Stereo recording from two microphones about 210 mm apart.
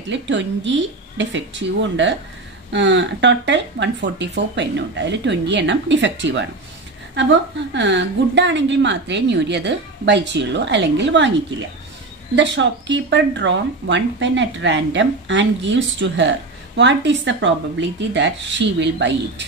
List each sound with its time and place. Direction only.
0.1 s speech: 60° right (ahead or behind)
7.7 s speech: 60° right (ahead or behind)
12.4 s speech: 60° right (ahead or behind)